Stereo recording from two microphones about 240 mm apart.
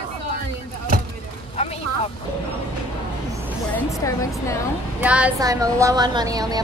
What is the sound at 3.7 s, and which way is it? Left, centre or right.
Speech, centre.